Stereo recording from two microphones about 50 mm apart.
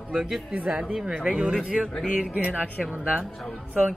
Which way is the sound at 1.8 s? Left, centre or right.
Centre.